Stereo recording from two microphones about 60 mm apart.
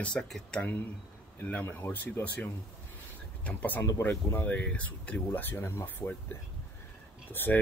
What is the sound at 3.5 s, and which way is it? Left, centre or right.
Speech, left.